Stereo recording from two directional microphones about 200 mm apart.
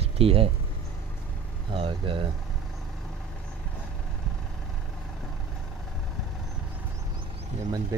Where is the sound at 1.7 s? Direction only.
25° right (ahead or behind).